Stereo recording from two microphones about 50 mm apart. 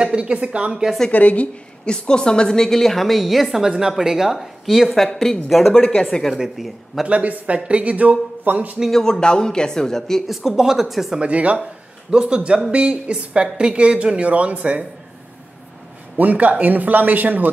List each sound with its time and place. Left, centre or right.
0.0 s a woman's voice: right
1.1 s a woman's voice: left
2.0 s a woman's voice: centre
5.7 s a woman's voice: centre
6.5 s speech: centre
7.1 s a woman's voice: right
8.9 s a woman's voice: centre
10.2 s speech: centre
11.1 s a woman's voice: right
16.2 s a man's voice: right